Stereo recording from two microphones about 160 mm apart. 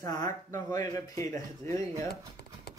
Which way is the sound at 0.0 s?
20° left (ahead or behind).